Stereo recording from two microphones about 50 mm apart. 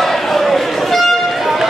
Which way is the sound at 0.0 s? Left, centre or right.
Centre.